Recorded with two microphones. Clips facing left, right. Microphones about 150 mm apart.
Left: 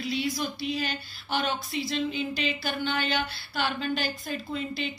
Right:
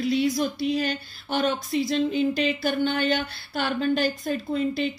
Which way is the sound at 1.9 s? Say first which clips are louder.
Right 6 dB; 45° right (ahead or behind).